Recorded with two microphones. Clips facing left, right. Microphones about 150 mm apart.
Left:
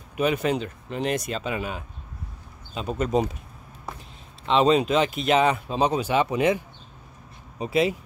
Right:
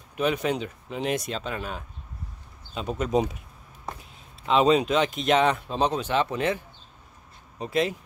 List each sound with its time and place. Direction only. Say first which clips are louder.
0.1 s speech: left 2 dB; 5° left (ahead or behind)
4.5 s speech: left 1 dB; centre (ahead or behind)